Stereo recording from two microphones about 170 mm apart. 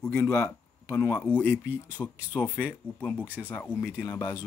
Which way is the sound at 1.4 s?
10° right (ahead or behind).